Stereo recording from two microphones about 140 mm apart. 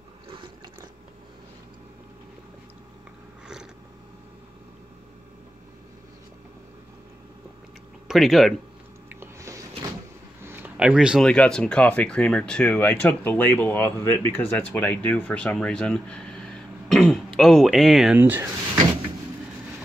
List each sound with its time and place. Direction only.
8.1 s speech: centre (ahead or behind)
9.1 s a sound: 20° right (ahead or behind)
11.2 s speech: 5° left (ahead or behind)
16.9 s throat clearing: centre (ahead or behind)
17.4 s speech: 5° left (ahead or behind)
18.1 s speech: 15° right (ahead or behind)